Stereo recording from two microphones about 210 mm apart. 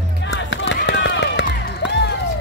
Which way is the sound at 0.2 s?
60° left (ahead or behind).